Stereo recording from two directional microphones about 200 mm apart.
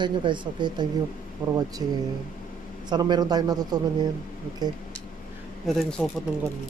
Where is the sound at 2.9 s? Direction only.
20° right (ahead or behind).